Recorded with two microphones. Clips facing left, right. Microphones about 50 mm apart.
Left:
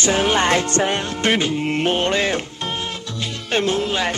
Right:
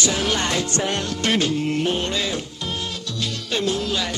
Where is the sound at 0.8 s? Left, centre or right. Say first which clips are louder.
Left 3 dB; left.